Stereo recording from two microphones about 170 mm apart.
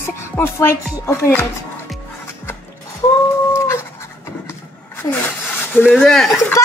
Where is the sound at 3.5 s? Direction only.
15° left (ahead or behind).